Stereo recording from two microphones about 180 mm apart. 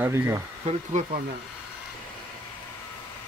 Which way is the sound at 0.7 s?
40° right (ahead or behind).